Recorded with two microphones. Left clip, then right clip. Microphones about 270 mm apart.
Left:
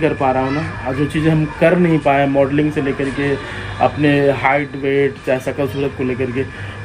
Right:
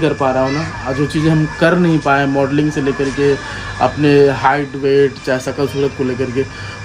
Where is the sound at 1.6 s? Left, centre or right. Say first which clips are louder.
Even; centre.